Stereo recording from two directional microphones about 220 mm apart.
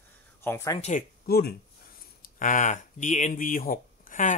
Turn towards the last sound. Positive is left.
turn(degrees=35)  # may be behind; listen again after turning